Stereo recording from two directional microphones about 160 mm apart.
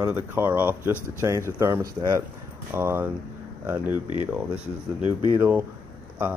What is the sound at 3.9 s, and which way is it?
Speech, 30° left (ahead or behind).